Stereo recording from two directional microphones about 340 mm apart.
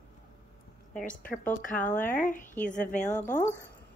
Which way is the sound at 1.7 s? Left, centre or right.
Centre.